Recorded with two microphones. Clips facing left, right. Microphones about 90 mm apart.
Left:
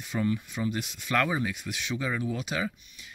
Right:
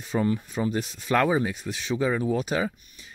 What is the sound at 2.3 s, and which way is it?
Speech, 40° right (ahead or behind).